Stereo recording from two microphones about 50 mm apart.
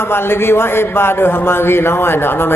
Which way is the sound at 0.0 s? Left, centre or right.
Left.